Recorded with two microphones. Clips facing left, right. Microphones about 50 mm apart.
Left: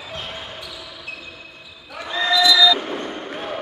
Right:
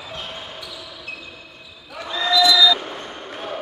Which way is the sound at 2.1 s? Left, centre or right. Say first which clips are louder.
Even; left.